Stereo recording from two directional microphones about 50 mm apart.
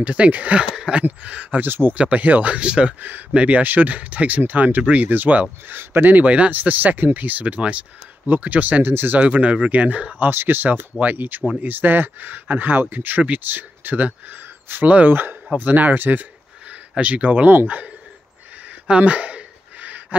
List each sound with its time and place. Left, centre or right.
0.0 s speech: right
0.7 s a sound: right
1.0 s speech: right
1.7 s speech: right
2.0 s speech: right
3.0 s speech: right
5.8 s speech: right
6.1 s speech: right
6.5 s speech: right
8.8 s speech: right
9.2 s speech: right
10.1 s speech: right
14.9 s speech: right
18.7 s a sound: right